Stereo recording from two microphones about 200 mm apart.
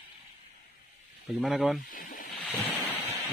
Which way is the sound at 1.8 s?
45° left (ahead or behind).